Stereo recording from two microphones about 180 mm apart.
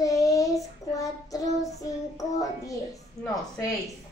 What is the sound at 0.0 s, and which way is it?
Child singing, 20° left (ahead or behind).